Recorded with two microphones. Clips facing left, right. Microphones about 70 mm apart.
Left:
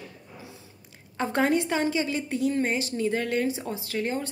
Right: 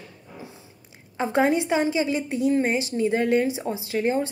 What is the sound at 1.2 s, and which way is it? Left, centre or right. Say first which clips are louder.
A woman's voice: right 3 dB; centre.